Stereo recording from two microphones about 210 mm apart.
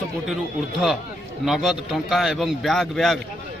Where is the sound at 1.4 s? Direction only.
Centre (ahead or behind).